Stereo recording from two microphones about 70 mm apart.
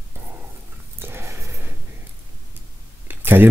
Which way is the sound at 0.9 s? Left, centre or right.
Right.